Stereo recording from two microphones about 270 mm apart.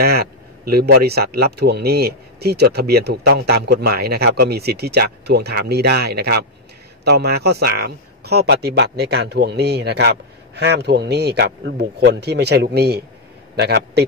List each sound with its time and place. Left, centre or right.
0.0 s speech: right